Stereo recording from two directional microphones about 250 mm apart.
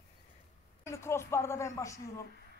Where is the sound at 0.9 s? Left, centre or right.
Centre.